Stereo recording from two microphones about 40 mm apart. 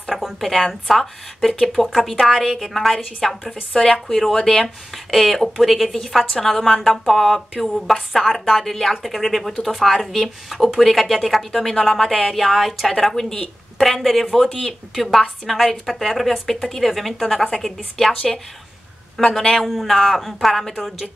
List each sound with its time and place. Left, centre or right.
0.0 s a sound: centre
0.4 s a woman's voice: centre
20.7 s a woman's voice: centre